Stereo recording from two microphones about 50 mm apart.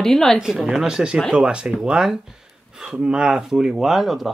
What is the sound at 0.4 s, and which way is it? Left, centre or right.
Speech, centre.